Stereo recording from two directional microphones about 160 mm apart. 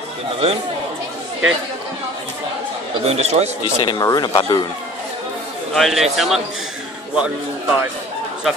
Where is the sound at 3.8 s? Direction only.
25° left (ahead or behind).